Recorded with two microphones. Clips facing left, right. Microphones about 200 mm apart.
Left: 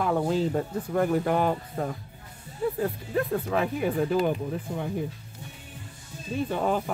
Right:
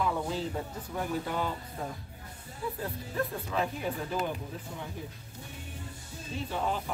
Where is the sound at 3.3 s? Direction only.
60° left (ahead or behind).